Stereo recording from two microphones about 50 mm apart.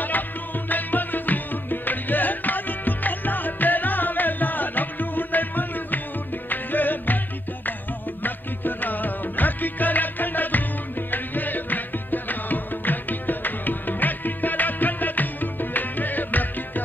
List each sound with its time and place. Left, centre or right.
0.7 s music: left
8.2 s music: left